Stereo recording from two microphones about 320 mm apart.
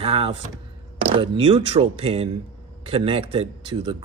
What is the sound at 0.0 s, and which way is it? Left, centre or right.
Speech, centre.